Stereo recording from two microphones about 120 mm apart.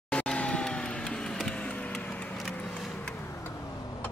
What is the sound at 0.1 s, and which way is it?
Vehicle, 10° left (ahead or behind).